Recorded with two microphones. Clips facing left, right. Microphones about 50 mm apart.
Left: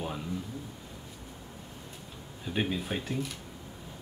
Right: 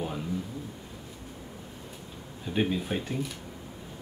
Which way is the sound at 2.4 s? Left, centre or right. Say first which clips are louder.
Right 3 dB; centre.